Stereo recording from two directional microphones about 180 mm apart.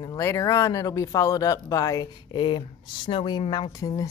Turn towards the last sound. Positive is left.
turn(degrees=20)  # may be behind; listen again after turning